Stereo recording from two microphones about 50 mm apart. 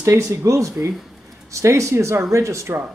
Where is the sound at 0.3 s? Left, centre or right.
Right.